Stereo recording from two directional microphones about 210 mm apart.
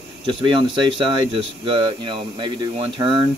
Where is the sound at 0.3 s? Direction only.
25° right (ahead or behind).